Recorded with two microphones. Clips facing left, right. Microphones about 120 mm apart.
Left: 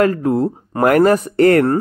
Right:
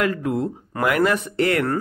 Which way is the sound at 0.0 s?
40° left (ahead or behind).